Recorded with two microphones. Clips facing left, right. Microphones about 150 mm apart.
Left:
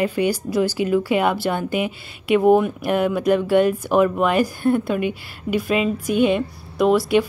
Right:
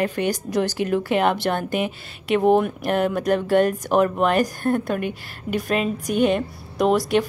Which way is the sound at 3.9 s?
5° left (ahead or behind).